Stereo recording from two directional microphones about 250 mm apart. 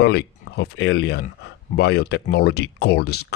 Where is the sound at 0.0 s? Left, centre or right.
Left.